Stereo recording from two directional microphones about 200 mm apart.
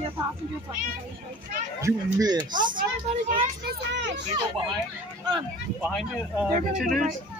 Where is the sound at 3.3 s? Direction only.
55° right (ahead or behind).